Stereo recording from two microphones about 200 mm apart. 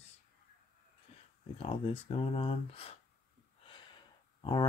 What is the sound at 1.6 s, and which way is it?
Speech, 30° left (ahead or behind).